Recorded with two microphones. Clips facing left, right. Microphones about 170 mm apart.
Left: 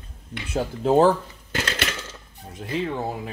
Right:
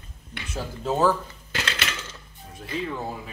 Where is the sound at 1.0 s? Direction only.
45° left (ahead or behind).